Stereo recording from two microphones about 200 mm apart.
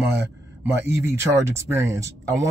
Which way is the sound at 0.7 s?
15° right (ahead or behind).